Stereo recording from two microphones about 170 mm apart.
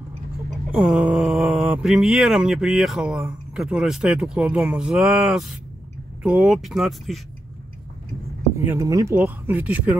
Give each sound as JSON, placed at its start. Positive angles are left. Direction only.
{"t": 0.7, "sound": "speech", "side_deg": -5}
{"t": 8.5, "sound": "speech", "side_deg": -15}